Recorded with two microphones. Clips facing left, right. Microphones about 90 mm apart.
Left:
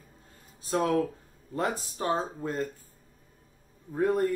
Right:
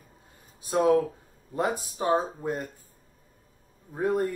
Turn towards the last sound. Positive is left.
turn(degrees=-10)  # may be behind; listen again after turning